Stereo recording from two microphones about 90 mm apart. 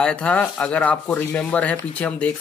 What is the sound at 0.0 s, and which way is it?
Speech, 10° left (ahead or behind).